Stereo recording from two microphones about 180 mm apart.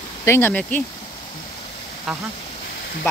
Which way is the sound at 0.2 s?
15° left (ahead or behind).